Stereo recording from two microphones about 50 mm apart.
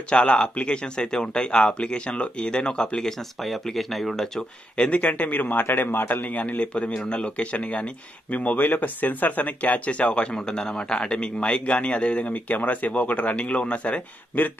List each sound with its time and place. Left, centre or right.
0.1 s a man's voice: left
3.1 s speech: centre
4.7 s a man's voice: left